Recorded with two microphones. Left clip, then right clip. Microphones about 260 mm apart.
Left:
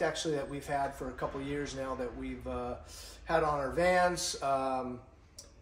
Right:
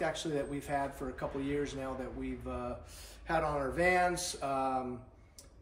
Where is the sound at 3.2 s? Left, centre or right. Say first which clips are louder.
Left 3 dB; centre.